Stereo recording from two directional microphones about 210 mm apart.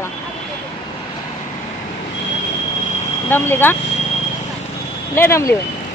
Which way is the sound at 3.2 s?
10° left (ahead or behind).